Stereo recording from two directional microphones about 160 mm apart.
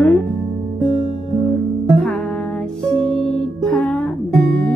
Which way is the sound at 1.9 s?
5° left (ahead or behind).